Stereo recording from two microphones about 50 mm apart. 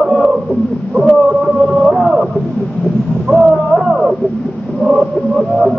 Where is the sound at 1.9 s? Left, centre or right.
Centre.